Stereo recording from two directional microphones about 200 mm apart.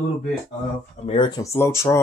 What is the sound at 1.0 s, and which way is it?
Speech, 25° left (ahead or behind).